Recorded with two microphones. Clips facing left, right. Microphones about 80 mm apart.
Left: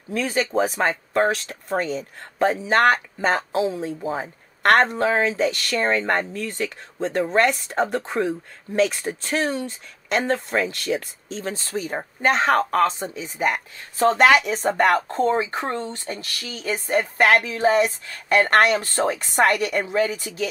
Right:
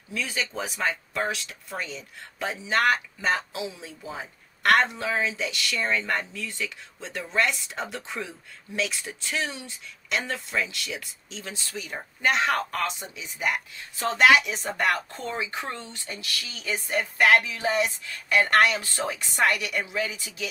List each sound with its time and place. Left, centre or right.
0.1 s speech: left